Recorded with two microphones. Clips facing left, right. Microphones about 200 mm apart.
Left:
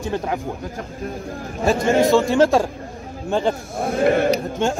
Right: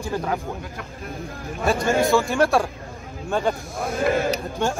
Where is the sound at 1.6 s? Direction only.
30° left (ahead or behind).